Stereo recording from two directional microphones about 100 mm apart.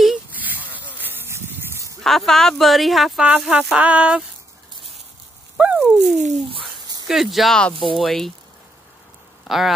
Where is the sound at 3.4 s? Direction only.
5° right (ahead or behind).